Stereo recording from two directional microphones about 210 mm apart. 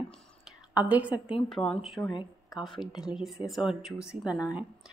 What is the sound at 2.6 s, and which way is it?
A woman's voice, centre (ahead or behind).